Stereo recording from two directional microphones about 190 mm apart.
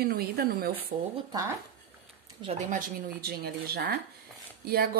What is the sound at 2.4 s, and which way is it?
Speech, 30° right (ahead or behind).